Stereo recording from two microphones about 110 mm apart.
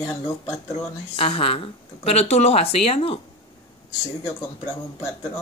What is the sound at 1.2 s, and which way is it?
Speech, 60° left (ahead or behind).